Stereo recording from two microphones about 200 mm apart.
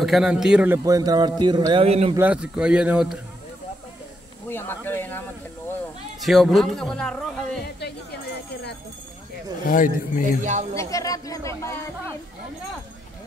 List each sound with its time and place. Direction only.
0.0 s a man's voice: centre (ahead or behind)
0.8 s a man's voice: 20° right (ahead or behind)
2.1 s a man's voice: 5° right (ahead or behind)
4.5 s speech: 10° left (ahead or behind)
6.2 s a man's voice: centre (ahead or behind)
7.8 s a sound: 55° left (ahead or behind)
9.6 s speech: 45° left (ahead or behind)
10.4 s speech: 35° right (ahead or behind)
10.8 s speech: 15° left (ahead or behind)